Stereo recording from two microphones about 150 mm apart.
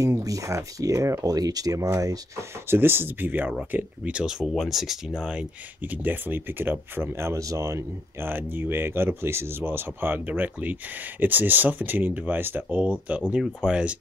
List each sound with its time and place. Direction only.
0.0 s speech: 20° right (ahead or behind)